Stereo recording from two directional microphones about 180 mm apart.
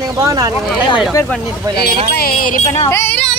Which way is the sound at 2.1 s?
55° left (ahead or behind).